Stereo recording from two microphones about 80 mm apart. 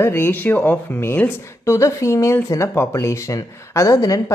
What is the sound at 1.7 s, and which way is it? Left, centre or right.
Speech, left.